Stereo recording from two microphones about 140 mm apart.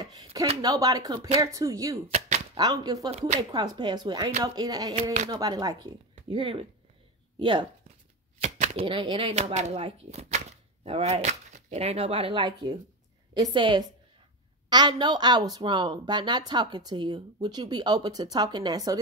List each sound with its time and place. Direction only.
0.0 s speech: 30° right (ahead or behind)
2.0 s a sound: 50° right (ahead or behind)
2.5 s speech: 30° right (ahead or behind)
3.1 s speech: 50° right (ahead or behind)
3.3 s speech: 30° right (ahead or behind)
6.2 s speech: 40° right (ahead or behind)
8.4 s chopping: 55° right (ahead or behind)
8.8 s speech: 40° right (ahead or behind)
9.3 s speech: 55° right (ahead or behind); by 18.9 s 25° right (ahead or behind)